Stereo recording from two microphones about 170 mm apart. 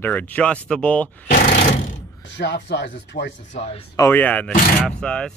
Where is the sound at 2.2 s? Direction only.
90° left.